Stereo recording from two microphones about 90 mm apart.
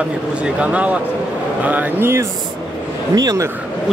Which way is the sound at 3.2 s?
40° right (ahead or behind).